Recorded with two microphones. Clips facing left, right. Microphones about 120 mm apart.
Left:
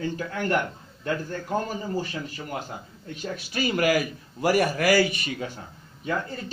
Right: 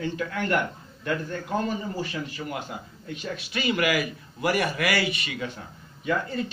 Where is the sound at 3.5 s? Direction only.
40° left (ahead or behind).